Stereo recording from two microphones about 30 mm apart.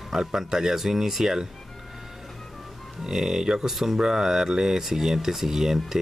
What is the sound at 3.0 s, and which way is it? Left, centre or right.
Speech, centre.